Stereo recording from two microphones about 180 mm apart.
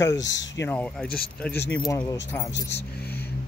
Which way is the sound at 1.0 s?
55° left (ahead or behind).